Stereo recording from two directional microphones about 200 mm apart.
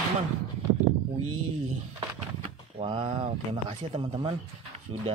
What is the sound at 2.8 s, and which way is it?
Speech, 25° right (ahead or behind).